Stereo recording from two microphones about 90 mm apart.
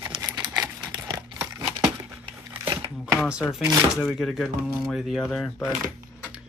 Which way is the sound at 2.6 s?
90° right.